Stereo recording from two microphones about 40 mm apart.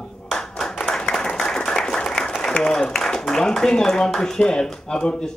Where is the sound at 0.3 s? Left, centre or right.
Centre.